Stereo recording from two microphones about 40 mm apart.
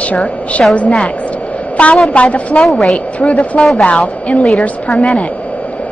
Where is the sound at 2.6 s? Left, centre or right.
Centre.